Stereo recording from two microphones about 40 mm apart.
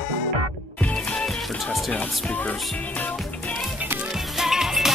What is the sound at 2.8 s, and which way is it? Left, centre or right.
Music, left.